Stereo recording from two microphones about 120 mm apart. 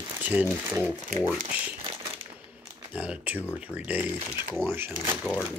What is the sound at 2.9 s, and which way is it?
Speech, 10° right (ahead or behind).